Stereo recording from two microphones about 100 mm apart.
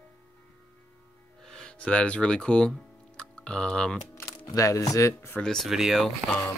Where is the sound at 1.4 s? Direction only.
10° left (ahead or behind).